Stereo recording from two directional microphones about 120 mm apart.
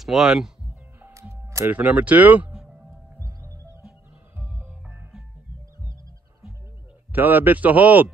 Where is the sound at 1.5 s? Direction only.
25° right (ahead or behind).